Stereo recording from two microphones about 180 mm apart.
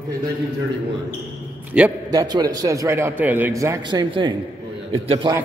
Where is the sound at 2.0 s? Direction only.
20° right (ahead or behind).